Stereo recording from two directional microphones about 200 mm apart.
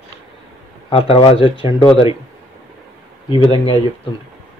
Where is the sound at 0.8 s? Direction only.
25° left (ahead or behind).